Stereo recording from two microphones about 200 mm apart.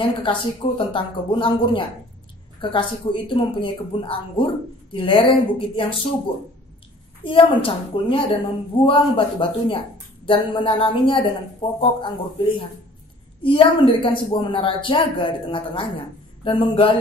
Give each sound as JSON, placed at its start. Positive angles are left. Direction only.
{"t": 0.0, "sound": "a woman's voice", "side_deg": 25}
{"t": 7.2, "sound": "a woman's voice", "side_deg": 25}